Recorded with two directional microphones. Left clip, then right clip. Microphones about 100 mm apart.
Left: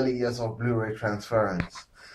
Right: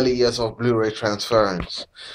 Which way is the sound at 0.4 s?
35° right (ahead or behind).